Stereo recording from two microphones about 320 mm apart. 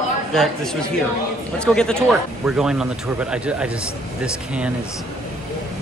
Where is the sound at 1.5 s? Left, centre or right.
Centre.